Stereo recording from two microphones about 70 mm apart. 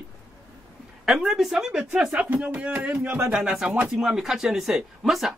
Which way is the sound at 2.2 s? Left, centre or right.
Right.